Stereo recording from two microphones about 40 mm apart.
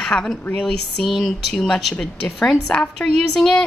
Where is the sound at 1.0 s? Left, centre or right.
Centre.